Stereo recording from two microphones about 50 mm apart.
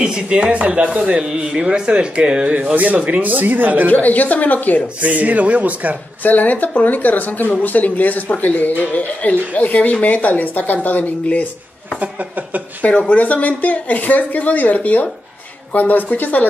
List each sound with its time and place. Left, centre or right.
0.0 s speech: centre
2.7 s speech: right
3.9 s speech: left
5.0 s speech: right
6.2 s speech: left
12.0 s speech: right
13.1 s speech: left